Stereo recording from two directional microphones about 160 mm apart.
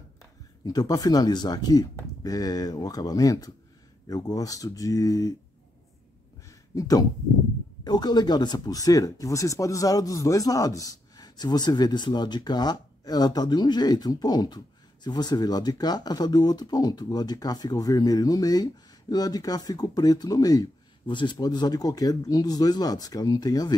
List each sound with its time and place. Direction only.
0.7 s speech: 25° left (ahead or behind)
6.7 s speech: 20° left (ahead or behind)